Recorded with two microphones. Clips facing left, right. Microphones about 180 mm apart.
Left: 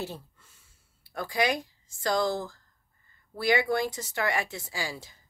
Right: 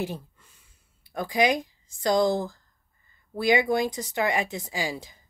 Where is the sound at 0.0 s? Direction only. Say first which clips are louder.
Right 5 dB; 15° right (ahead or behind).